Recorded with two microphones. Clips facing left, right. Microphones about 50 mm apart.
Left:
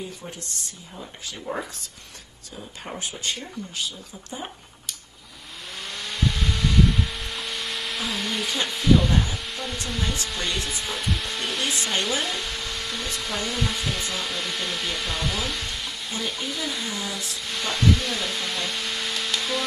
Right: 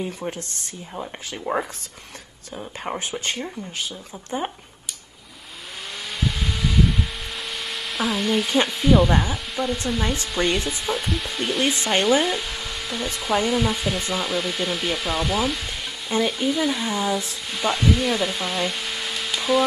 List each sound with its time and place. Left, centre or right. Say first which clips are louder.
0.2 s speech: right 6 dB; right
5.9 s vehicle: even; centre
10.2 s speech: right 6 dB; centre
16.5 s speech: right 7 dB; centre